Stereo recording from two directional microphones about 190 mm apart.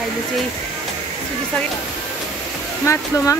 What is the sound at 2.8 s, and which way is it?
Speech, 15° left (ahead or behind).